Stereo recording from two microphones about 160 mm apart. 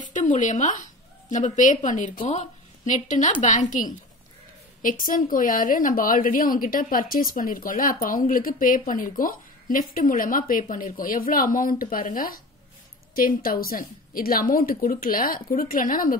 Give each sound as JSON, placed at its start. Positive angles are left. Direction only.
{"t": 0.0, "sound": "a woman's voice", "side_deg": 50}